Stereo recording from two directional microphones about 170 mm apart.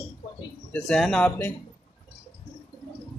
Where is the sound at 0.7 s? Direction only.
5° left (ahead or behind).